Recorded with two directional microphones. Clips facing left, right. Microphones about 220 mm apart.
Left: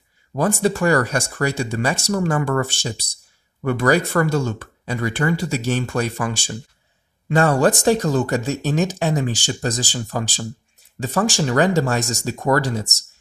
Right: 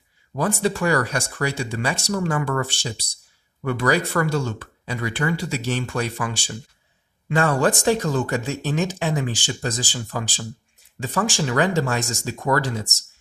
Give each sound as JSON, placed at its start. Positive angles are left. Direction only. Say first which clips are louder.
{"t": 0.3, "sound": "speech", "louder": "left 3 dB", "side_deg": 45}